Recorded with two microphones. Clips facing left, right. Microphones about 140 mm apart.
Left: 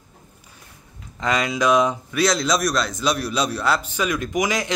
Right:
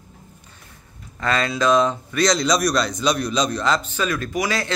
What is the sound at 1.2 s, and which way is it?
Speech, 15° left (ahead or behind).